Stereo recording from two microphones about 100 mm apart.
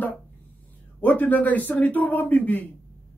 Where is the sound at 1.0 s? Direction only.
15° left (ahead or behind).